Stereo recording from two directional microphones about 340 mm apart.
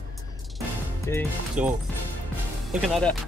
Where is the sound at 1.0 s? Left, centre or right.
Centre.